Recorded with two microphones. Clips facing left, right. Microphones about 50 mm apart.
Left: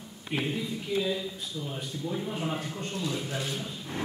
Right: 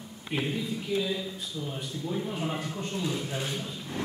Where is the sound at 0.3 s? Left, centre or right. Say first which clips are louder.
Even; centre.